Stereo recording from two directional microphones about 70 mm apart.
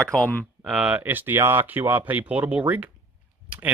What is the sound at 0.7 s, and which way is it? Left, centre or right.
Speech, centre.